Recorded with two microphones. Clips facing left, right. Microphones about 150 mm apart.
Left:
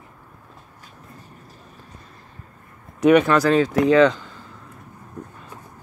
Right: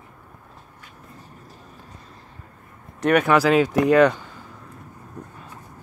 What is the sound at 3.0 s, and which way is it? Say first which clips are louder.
Speech: left 3 dB; 5° right (ahead or behind).